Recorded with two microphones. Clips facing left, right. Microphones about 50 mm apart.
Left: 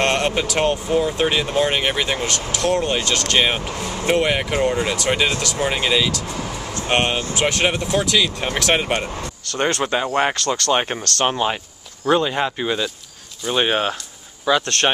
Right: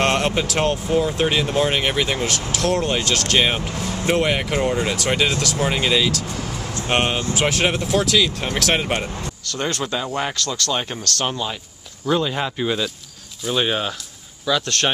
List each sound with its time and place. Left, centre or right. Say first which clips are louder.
0.0 s speech: even; centre
9.5 s speech: left 4 dB; left
12.2 s speech: left 2 dB; centre
13.5 s speech: left 2 dB; left